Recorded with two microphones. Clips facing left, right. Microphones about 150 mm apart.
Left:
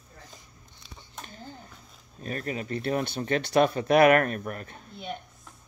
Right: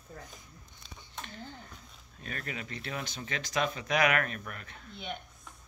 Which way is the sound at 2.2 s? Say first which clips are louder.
Left 8 dB; 35° left (ahead or behind).